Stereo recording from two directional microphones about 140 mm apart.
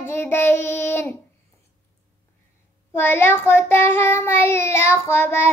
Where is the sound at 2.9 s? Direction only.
15° left (ahead or behind).